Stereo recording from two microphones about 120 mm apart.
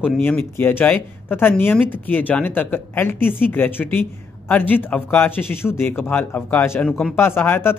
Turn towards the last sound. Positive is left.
turn(degrees=20)  # may be behind; listen again after turning